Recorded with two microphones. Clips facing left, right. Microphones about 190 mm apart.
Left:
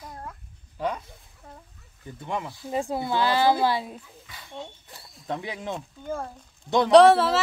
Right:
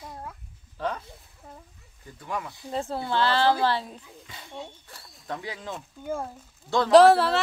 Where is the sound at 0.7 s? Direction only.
10° left (ahead or behind).